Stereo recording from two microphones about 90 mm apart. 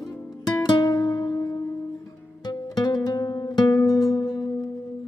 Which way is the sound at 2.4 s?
50° left (ahead or behind).